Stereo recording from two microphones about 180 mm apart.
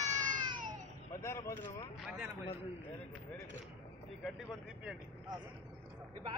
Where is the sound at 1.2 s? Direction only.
15° left (ahead or behind).